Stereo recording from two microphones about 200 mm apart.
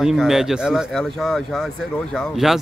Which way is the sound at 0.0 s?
Centre (ahead or behind).